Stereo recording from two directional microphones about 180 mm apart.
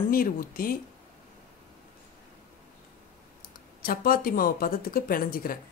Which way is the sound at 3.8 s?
50° left (ahead or behind).